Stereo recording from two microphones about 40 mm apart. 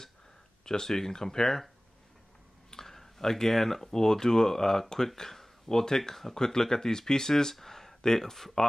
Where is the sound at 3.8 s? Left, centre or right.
Centre.